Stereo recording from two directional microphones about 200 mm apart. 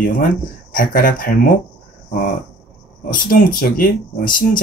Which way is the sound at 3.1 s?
45° left (ahead or behind).